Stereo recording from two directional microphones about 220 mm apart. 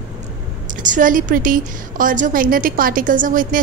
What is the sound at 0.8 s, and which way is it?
A woman's voice, 35° right (ahead or behind).